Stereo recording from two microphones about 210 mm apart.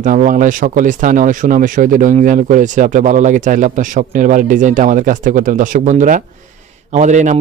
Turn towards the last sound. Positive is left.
turn(degrees=-35)  # may be behind; listen again after turning